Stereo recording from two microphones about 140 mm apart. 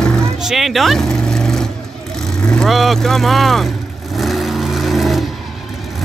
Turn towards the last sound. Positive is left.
turn(degrees=0)  # may be behind; listen again after turning